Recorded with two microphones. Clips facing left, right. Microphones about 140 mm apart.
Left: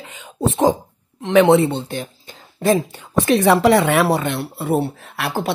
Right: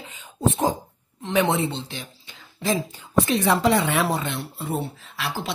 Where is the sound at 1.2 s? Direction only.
70° left (ahead or behind).